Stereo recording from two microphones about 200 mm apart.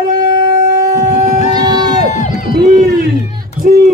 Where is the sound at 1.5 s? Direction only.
20° right (ahead or behind).